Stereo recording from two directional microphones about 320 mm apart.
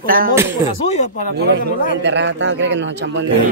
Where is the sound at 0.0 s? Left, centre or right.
Right.